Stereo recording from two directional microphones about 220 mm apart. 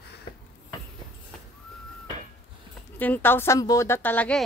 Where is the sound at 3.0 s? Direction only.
10° left (ahead or behind).